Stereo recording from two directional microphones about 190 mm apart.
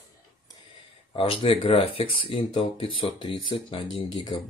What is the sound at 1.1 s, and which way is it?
Speech, 30° left (ahead or behind).